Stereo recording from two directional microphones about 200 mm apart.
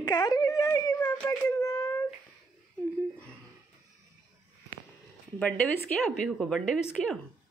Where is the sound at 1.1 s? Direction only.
20° left (ahead or behind).